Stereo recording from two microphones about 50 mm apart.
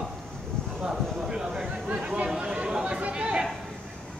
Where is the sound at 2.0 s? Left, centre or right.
Right.